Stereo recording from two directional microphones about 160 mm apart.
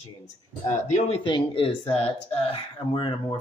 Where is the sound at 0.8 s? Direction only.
45° left (ahead or behind).